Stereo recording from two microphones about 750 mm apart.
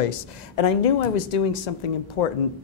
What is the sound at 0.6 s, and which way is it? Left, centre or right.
Speech, left.